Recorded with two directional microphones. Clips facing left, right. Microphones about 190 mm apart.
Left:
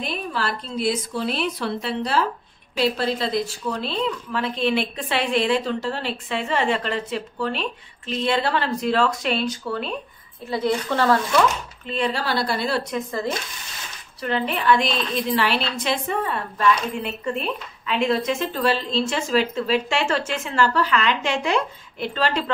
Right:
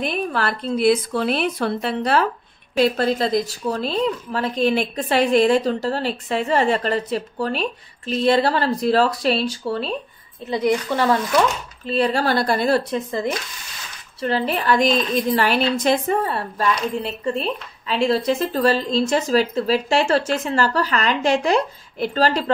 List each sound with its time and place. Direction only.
0.0 s a woman's voice: 55° right (ahead or behind); by 9.9 s 30° right (ahead or behind)
10.5 s speech: 15° right (ahead or behind)
11.8 s a woman's voice: 35° right (ahead or behind)
12.9 s speech: 20° right (ahead or behind)
14.2 s a woman's voice: 35° right (ahead or behind)